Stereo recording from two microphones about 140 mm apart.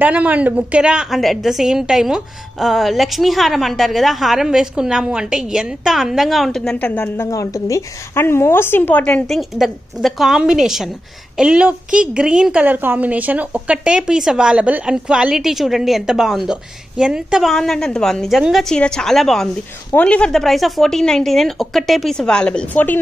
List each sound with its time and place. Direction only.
0.0 s a woman's voice: 10° right (ahead or behind); by 7.2 s 10° left (ahead or behind)
7.2 s a woman's voice: 25° left (ahead or behind)